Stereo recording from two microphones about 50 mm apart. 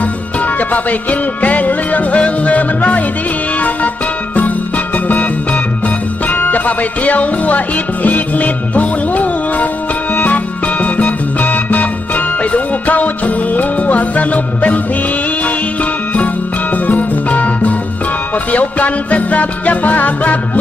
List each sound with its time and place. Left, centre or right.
1.4 s music: left
4.9 s music: left